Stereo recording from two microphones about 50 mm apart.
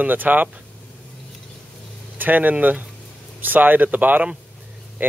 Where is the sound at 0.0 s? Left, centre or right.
Right.